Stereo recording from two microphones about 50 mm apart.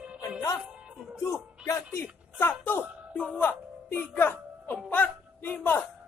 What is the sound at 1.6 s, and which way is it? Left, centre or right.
Music, left.